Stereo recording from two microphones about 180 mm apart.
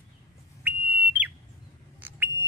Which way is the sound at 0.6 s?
10° right (ahead or behind).